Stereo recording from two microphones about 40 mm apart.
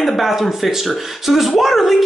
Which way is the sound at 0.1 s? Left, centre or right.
Centre.